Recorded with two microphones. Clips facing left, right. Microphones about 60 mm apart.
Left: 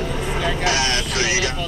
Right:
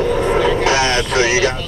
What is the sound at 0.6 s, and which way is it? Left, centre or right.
Speech, right.